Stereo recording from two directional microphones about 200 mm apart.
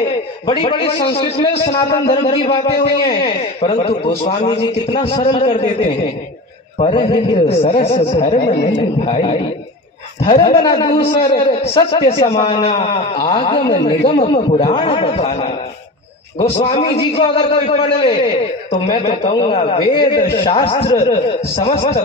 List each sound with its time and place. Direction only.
0.5 s a man's voice: 25° left (ahead or behind)
6.8 s a man's voice: 25° left (ahead or behind)